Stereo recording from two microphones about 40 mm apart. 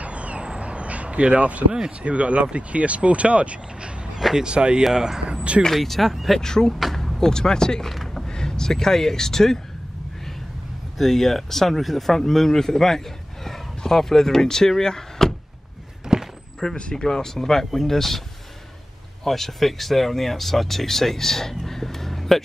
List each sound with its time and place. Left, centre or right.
0.0 s a sound: right
1.9 s speech: right
4.2 s speech: centre
4.5 s speech: right
4.8 s speech: centre
5.3 s vehicle: right
5.8 s speech: centre
6.4 s speech: centre
7.9 s a sound: centre
8.3 s speech: centre
11.0 s speech: centre
16.1 s a sound: centre
16.7 s speech: centre
19.2 s speech: centre